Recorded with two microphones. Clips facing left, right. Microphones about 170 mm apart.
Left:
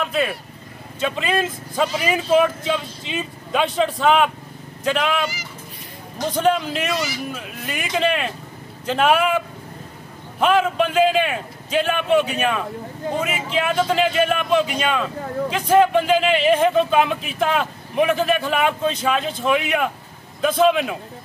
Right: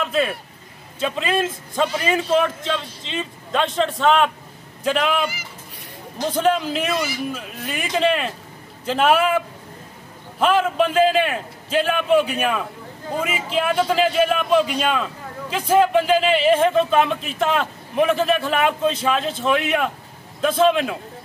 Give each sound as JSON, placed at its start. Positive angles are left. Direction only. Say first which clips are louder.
{"t": 0.0, "sound": "speech", "louder": "right 1 dB", "side_deg": 5}
{"t": 6.3, "sound": "speech", "louder": "even", "side_deg": 0}
{"t": 10.4, "sound": "speech", "louder": "even", "side_deg": 0}